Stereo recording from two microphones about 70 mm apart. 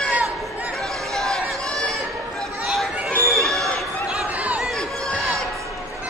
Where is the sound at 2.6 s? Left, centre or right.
Centre.